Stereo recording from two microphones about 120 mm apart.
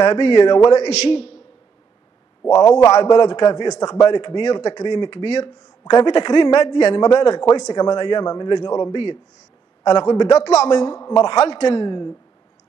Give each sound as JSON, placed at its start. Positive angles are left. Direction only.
{"t": 0.0, "sound": "a man's voice", "side_deg": 40}
{"t": 0.8, "sound": "a man's voice", "side_deg": 60}
{"t": 2.4, "sound": "a man's voice", "side_deg": 30}